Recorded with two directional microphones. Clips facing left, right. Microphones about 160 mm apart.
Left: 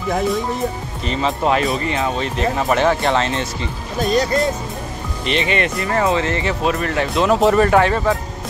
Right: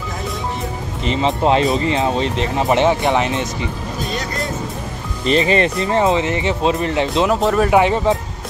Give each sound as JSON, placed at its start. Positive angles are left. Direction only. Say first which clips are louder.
{"t": 1.0, "sound": "speech", "louder": "right 2 dB", "side_deg": -20}
{"t": 5.2, "sound": "speech", "louder": "right 4 dB", "side_deg": -35}
{"t": 7.2, "sound": "speech", "louder": "left 2 dB", "side_deg": 0}
{"t": 7.7, "sound": "speech", "louder": "right 1 dB", "side_deg": -15}